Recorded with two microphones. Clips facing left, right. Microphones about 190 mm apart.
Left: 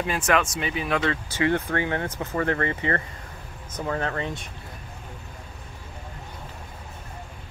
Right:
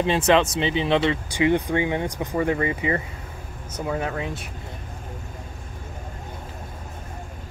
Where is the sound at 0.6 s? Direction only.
25° right (ahead or behind).